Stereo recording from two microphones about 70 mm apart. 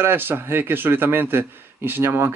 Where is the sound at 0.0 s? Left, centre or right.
Right.